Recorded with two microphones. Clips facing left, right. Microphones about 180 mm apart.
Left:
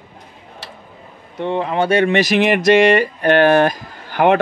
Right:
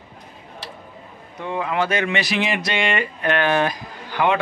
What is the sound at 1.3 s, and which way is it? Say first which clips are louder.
Speech: left 5 dB; 30° left (ahead or behind).